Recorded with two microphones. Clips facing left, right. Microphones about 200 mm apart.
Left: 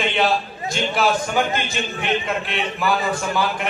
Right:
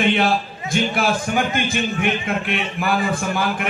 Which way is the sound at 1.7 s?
55° right (ahead or behind).